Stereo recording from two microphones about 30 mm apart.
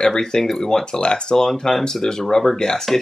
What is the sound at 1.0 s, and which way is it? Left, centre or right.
Speech, left.